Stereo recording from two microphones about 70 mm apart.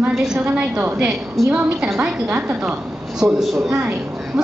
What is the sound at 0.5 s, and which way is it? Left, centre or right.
Speech, right.